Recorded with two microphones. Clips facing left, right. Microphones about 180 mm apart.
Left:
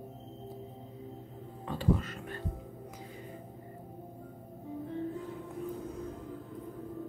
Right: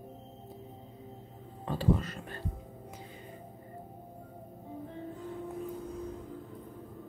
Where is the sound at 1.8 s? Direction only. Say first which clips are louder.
Right 1 dB; 35° right (ahead or behind).